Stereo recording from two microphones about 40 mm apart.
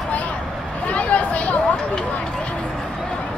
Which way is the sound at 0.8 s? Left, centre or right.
Left.